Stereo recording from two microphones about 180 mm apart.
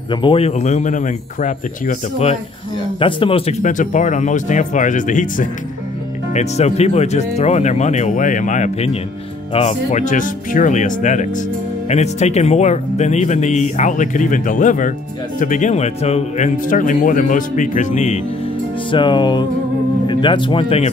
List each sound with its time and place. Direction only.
0.1 s speech: 30° left (ahead or behind)
3.0 s music: 30° left (ahead or behind)
3.6 s speech: 45° left (ahead or behind)
18.9 s music: 25° left (ahead or behind)
20.1 s speech: 25° left (ahead or behind)